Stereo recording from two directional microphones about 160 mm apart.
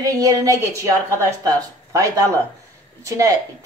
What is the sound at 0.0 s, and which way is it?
A woman's voice, 20° right (ahead or behind).